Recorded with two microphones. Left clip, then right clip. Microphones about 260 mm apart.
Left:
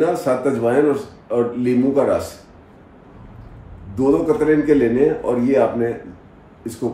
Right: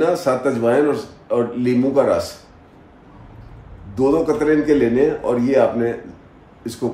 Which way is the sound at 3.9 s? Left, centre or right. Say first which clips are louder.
Even; centre.